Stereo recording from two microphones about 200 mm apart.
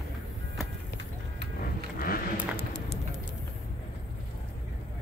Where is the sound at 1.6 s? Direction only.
45° left (ahead or behind).